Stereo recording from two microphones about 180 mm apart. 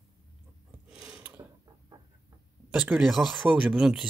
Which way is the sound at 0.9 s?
5° right (ahead or behind).